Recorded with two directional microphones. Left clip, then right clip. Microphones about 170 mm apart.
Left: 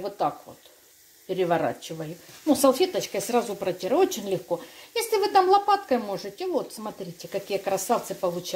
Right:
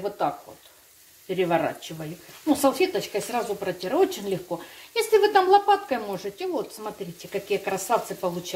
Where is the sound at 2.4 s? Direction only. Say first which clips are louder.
Left 1 dB; 55° left (ahead or behind).